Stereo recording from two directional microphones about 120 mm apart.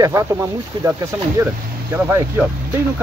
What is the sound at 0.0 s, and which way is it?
Speech, 25° right (ahead or behind).